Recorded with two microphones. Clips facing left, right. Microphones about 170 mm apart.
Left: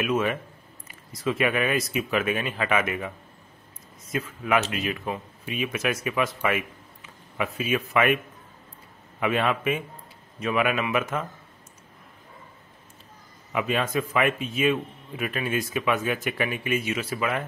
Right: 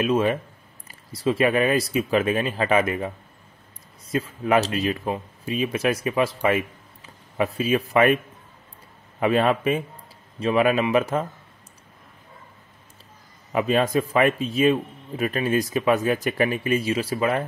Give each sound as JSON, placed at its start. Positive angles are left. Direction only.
{"t": 0.0, "sound": "a man's voice", "side_deg": -30}
{"t": 4.1, "sound": "speech", "side_deg": -35}
{"t": 9.2, "sound": "a man's voice", "side_deg": -35}
{"t": 13.5, "sound": "a man's voice", "side_deg": -35}